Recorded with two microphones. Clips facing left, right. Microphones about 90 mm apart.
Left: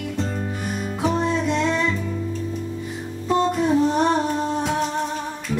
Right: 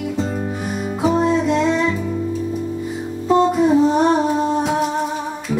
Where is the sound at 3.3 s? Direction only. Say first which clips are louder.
Right 5 dB; 5° right (ahead or behind).